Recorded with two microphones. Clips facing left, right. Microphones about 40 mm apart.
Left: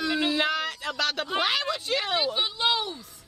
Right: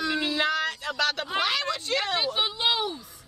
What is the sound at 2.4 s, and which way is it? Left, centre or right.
Speech, centre.